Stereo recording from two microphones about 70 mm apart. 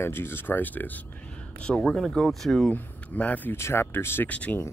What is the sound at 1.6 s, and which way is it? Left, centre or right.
Speech, centre.